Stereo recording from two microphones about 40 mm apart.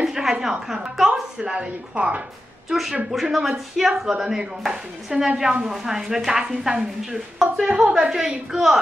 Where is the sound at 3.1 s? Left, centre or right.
Centre.